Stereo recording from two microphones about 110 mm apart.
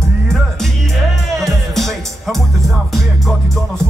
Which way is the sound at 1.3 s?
Centre (ahead or behind).